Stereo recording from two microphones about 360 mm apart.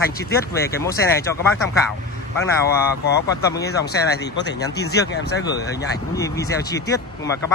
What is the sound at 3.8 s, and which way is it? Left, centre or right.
Speech, left.